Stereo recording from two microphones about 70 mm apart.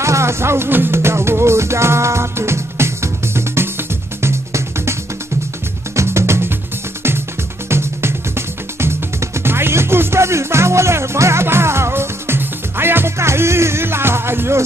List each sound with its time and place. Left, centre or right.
0.0 s music: right
5.9 s music: right
7.7 s music: right